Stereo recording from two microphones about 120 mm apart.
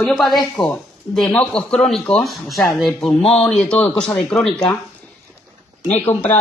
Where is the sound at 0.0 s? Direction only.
Centre (ahead or behind).